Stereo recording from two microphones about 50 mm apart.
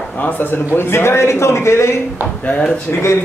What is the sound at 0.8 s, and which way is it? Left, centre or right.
A man's voice, left.